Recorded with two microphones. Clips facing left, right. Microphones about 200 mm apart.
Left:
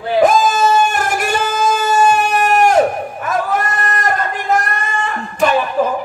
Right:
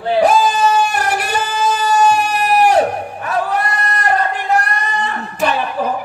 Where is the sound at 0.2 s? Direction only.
35° right (ahead or behind).